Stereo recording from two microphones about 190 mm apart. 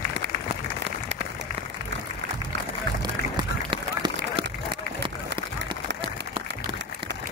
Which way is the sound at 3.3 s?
25° right (ahead or behind).